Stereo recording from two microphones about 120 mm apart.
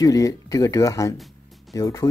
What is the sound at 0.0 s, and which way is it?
Speech, 30° left (ahead or behind).